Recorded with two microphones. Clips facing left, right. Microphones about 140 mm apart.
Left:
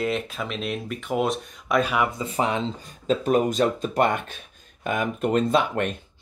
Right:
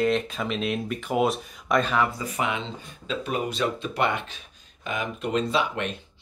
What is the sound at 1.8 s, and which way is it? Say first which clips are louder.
Speech: left 1 dB; 15° left (ahead or behind).